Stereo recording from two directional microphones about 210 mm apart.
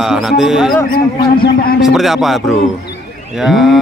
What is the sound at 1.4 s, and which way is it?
Speech, 45° left (ahead or behind).